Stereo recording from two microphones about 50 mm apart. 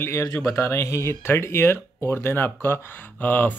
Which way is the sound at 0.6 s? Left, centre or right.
Left.